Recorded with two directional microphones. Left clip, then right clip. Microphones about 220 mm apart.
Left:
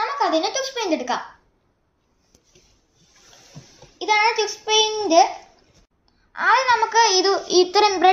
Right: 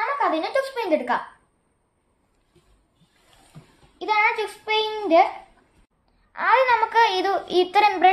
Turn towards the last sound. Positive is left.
turn(degrees=-10)  # may be behind; listen again after turning